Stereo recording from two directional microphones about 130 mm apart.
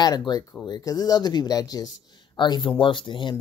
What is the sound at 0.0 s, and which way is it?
Speech, 35° left (ahead or behind).